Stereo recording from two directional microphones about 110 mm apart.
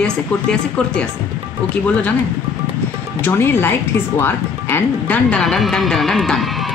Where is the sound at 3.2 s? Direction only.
20° left (ahead or behind).